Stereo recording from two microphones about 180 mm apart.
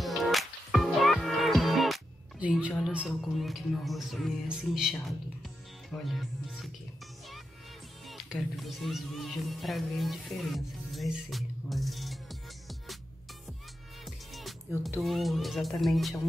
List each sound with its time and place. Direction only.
0.0 s music: centre (ahead or behind)
8.1 s speech: centre (ahead or behind)
14.0 s music: centre (ahead or behind)